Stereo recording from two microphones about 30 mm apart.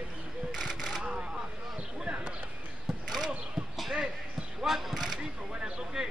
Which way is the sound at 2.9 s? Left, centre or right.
Centre.